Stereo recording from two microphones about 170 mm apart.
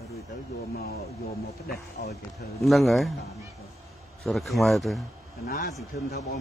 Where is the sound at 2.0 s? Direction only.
75° left (ahead or behind).